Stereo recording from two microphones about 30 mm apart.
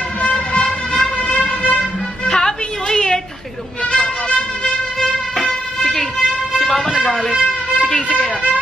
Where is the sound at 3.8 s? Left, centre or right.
Left.